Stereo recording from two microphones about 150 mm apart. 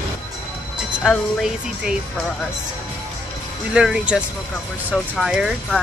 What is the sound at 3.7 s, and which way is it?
A woman's voice, 5° right (ahead or behind).